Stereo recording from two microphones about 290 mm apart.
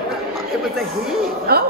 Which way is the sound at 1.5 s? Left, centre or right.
Right.